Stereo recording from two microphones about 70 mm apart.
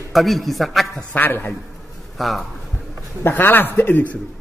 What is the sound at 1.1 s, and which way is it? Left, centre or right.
Speech, left.